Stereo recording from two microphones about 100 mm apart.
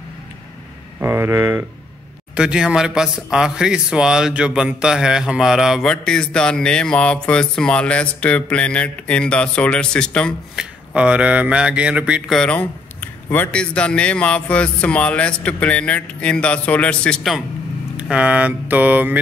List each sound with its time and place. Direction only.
0.9 s speech: 25° right (ahead or behind)
2.3 s speech: 10° right (ahead or behind)
5.9 s speech: 5° left (ahead or behind)
10.5 s speech: 5° right (ahead or behind)
12.4 s speech: 20° left (ahead or behind)
17.9 s speech: 10° right (ahead or behind)